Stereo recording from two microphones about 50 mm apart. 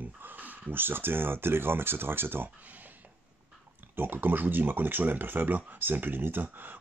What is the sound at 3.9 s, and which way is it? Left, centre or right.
Speech, right.